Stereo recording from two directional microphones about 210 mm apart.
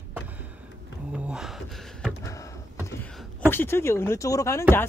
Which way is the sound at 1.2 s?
5° right (ahead or behind).